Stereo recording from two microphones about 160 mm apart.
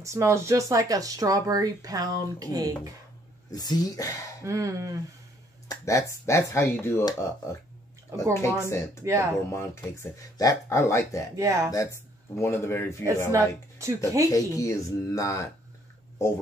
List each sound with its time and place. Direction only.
0.0 s speech: 20° right (ahead or behind)
3.5 s speech: 25° left (ahead or behind)
4.4 s speech: 20° right (ahead or behind)
5.7 s speech: 20° left (ahead or behind)
8.3 s speech: 20° left (ahead or behind)
9.0 s speech: 20° right (ahead or behind)
9.5 s speech: 20° left (ahead or behind)
11.3 s speech: 20° right (ahead or behind)
11.7 s speech: 20° left (ahead or behind)
13.3 s speech: 20° right (ahead or behind)
14.3 s speech: 20° left (ahead or behind)